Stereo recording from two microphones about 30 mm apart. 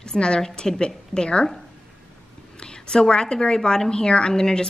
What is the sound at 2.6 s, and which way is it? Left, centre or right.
A woman's voice, left.